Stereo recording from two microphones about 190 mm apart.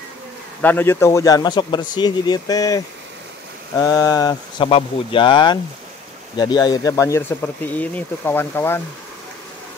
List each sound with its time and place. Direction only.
0.6 s a man's voice: 10° left (ahead or behind)
4.6 s a man's voice: 30° left (ahead or behind); by 8.8 s 10° left (ahead or behind)